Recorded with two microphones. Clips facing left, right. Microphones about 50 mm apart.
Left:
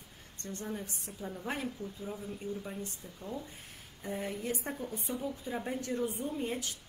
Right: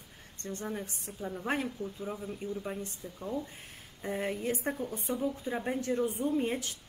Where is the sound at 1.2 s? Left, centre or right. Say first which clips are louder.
Right 4 dB; centre.